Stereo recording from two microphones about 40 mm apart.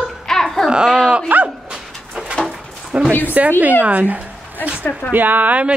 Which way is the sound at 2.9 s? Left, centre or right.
Right.